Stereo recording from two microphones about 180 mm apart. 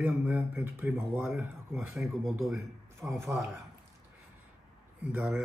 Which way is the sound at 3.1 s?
15° right (ahead or behind).